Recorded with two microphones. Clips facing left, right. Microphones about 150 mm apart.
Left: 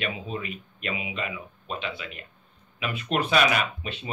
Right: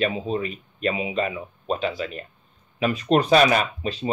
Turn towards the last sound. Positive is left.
turn(degrees=-35)  # may be behind; listen again after turning